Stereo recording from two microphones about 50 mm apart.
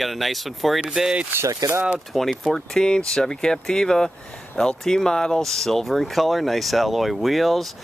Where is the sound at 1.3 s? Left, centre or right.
Right.